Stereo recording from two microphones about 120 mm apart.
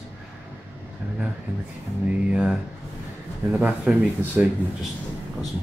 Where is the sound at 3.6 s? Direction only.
10° right (ahead or behind).